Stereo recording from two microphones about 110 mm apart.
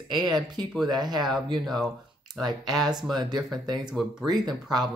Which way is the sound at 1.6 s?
Centre (ahead or behind).